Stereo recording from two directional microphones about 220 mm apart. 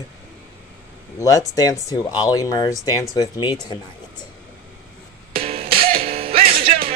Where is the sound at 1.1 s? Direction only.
15° left (ahead or behind).